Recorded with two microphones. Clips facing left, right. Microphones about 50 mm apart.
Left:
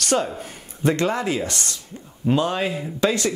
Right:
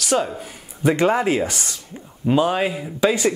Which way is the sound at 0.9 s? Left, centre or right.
Centre.